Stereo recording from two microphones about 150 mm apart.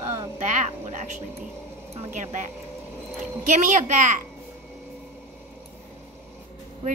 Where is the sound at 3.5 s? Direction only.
55° right (ahead or behind).